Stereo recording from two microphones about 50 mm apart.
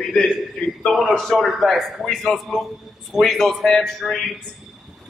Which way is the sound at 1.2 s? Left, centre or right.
Centre.